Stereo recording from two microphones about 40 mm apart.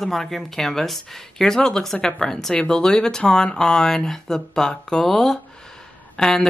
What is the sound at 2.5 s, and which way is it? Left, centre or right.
Speech, left.